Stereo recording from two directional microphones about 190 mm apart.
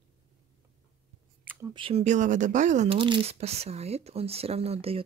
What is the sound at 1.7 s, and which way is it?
Speech, 30° right (ahead or behind).